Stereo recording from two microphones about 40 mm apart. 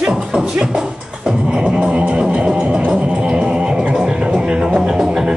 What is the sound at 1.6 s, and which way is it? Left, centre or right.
Music, right.